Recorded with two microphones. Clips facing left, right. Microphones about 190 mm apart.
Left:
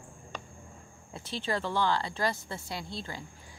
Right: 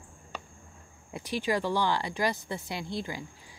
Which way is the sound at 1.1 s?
15° right (ahead or behind).